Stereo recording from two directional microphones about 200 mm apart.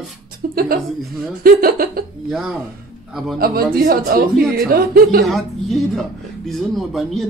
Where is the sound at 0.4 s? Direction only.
45° right (ahead or behind).